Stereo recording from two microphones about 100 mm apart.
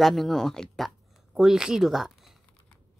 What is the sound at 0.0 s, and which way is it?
Speech, centre (ahead or behind).